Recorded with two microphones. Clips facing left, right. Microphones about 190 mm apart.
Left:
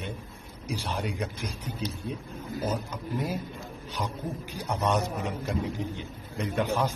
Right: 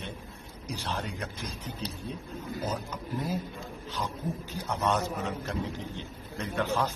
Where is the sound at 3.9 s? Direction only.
15° left (ahead or behind).